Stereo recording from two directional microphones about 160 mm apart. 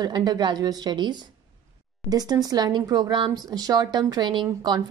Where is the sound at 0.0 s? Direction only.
25° right (ahead or behind).